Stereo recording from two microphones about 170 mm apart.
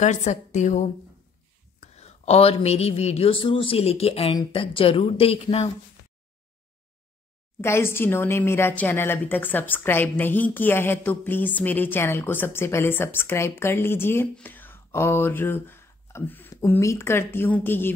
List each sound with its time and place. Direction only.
0.0 s a woman's voice: 45° left (ahead or behind)
7.6 s a woman's voice: 15° left (ahead or behind)